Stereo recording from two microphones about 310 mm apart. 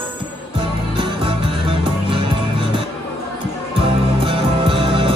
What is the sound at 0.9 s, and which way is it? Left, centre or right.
Music, centre.